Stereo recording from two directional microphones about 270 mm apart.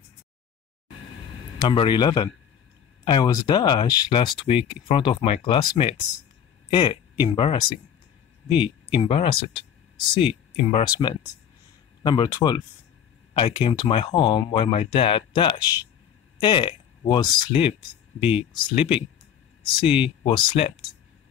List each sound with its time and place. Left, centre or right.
1.6 s speech: centre
8.9 s speech: centre